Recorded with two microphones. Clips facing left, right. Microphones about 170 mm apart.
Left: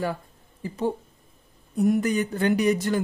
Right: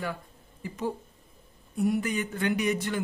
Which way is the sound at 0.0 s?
35° left (ahead or behind).